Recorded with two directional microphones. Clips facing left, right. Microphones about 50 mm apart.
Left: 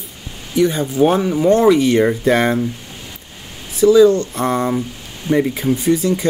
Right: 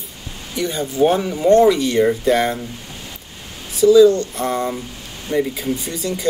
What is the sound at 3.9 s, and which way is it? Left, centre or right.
Speech, left.